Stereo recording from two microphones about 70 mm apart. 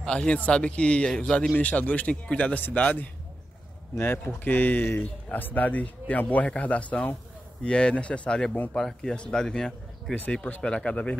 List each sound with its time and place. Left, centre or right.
0.0 s speech: centre
4.5 s speech: left